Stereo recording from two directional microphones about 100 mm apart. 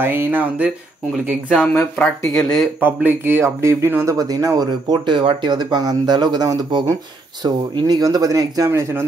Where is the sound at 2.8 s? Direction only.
20° right (ahead or behind).